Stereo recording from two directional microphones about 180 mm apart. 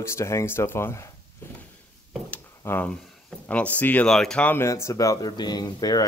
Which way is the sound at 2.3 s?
10° left (ahead or behind).